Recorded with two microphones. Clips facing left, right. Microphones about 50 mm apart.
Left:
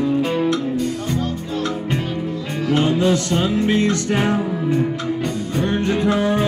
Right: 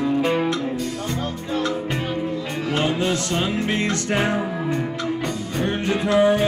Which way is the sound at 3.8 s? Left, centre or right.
Right.